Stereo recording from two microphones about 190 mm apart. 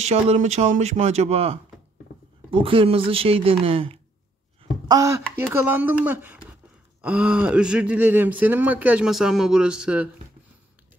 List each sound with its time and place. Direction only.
0.0 s speech: 35° right (ahead or behind)
4.8 s speech: 15° right (ahead or behind)